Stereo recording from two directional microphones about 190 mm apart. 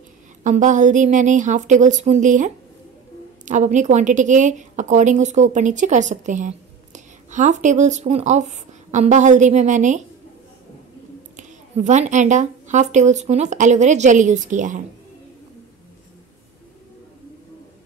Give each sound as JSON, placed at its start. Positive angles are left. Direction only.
{"t": 0.4, "sound": "a woman's voice", "side_deg": -40}
{"t": 11.3, "sound": "a woman's voice", "side_deg": -40}